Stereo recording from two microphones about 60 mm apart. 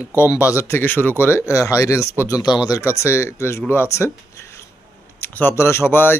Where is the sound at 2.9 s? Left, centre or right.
Left.